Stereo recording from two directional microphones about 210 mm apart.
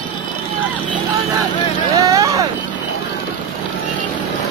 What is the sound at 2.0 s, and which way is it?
Vehicle, 15° right (ahead or behind).